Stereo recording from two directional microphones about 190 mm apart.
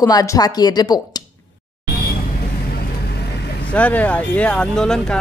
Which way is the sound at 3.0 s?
60° left (ahead or behind).